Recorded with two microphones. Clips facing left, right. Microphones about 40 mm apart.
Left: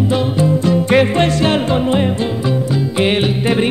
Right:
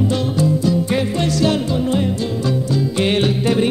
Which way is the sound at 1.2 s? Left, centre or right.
Left.